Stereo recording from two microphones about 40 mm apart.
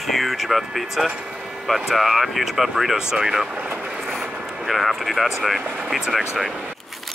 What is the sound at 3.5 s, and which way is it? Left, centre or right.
Speech, right.